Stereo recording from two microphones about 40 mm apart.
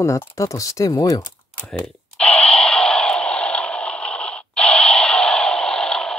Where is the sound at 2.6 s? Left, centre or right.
Left.